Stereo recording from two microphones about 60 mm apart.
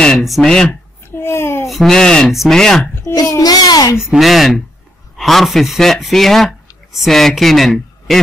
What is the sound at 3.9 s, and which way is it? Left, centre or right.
A woman's voice, centre.